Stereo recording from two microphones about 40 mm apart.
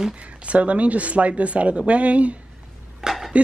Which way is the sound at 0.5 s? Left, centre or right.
Right.